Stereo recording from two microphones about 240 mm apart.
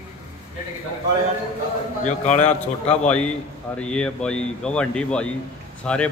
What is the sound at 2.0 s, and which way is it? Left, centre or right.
Speech, left.